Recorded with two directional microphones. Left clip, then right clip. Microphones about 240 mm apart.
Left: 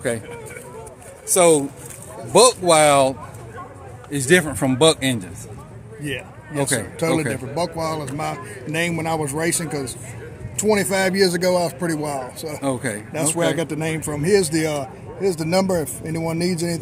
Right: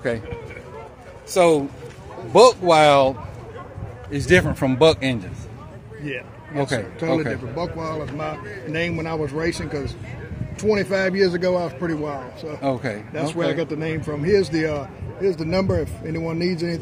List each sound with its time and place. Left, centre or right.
1.3 s a man's voice: centre
7.0 s a man's voice: left
12.6 s a man's voice: centre
13.1 s a man's voice: left